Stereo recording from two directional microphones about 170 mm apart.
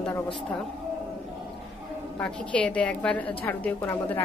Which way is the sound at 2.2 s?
5° left (ahead or behind).